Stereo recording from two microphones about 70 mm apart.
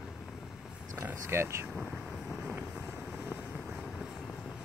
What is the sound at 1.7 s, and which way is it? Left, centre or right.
Vehicle, centre.